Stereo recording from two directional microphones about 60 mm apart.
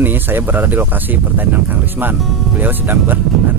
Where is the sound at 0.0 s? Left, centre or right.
Right.